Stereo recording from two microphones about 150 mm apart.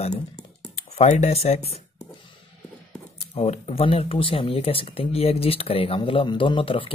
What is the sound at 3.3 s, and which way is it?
Speech, 45° left (ahead or behind).